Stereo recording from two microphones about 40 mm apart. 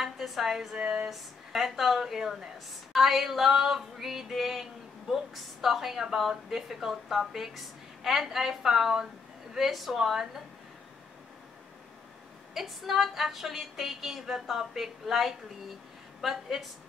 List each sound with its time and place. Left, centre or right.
0.0 s a woman's voice: centre
0.7 s a sound: centre
1.1 s speech: centre
12.5 s speech: centre